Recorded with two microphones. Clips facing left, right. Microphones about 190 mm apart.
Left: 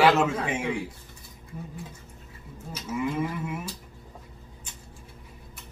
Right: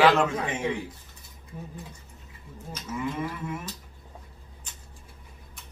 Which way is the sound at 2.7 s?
10° left (ahead or behind).